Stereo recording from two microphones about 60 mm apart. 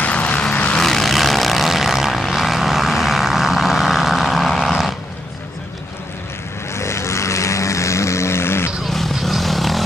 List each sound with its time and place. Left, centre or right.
0.0 s vehicle: left
0.7 s vehicle: centre
6.7 s vehicle: left
8.8 s vehicle: centre